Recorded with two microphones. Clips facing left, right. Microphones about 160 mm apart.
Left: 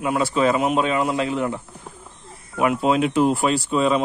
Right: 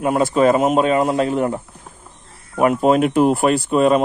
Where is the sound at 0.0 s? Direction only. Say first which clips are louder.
Right 5 dB; 45° right (ahead or behind).